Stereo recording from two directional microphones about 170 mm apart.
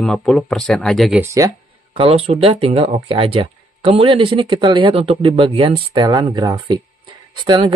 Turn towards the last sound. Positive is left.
turn(degrees=-30)  # may be behind; listen again after turning